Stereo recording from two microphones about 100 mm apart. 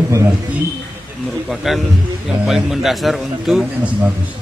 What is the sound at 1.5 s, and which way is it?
A man's voice, centre (ahead or behind).